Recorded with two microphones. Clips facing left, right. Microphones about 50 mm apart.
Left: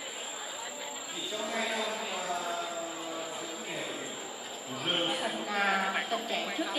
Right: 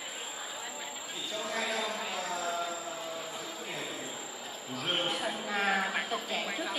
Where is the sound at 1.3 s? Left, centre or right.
Centre.